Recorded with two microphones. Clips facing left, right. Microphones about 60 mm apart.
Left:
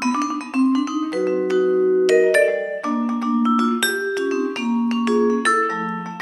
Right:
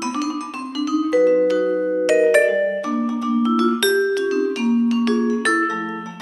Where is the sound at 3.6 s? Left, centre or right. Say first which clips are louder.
Right 1 dB; centre.